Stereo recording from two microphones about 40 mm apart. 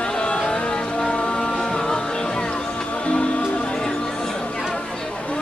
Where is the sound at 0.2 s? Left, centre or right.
Left.